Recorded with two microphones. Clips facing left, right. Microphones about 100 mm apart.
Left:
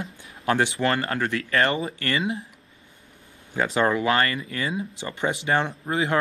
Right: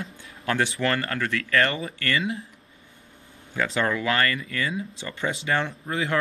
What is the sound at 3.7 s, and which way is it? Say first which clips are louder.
Speech: left 3 dB; 30° left (ahead or behind).